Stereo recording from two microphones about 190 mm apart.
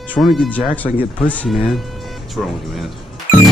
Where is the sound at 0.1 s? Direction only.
Centre (ahead or behind).